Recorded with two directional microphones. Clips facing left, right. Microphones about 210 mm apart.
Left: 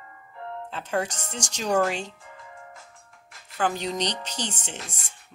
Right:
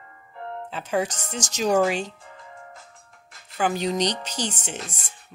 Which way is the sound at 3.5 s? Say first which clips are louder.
Right 3 dB; 10° right (ahead or behind).